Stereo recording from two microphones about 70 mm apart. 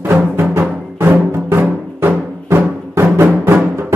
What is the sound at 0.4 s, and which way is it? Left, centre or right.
Music, right.